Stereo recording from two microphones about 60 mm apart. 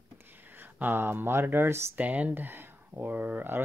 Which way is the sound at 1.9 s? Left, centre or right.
Right.